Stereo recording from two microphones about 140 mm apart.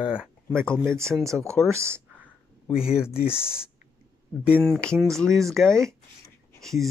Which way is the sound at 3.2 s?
45° left (ahead or behind).